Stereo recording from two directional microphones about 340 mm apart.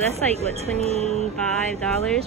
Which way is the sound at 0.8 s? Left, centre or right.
Centre.